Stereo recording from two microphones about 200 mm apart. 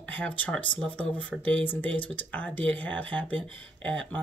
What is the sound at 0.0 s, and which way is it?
Speech, 10° left (ahead or behind).